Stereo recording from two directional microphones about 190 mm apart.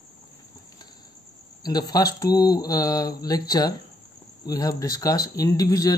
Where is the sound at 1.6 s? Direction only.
20° left (ahead or behind).